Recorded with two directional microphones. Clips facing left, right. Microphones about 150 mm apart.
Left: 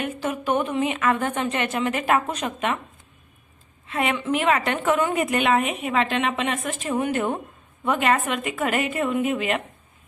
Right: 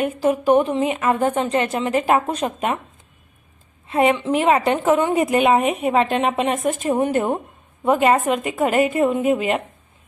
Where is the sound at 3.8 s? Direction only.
35° right (ahead or behind).